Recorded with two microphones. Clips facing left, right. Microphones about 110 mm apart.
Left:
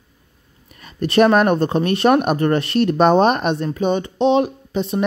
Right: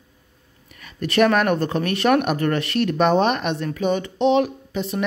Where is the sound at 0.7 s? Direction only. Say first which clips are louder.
Left 4 dB; 35° left (ahead or behind).